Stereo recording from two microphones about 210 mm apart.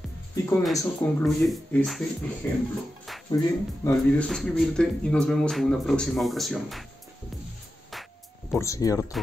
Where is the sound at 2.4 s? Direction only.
10° left (ahead or behind).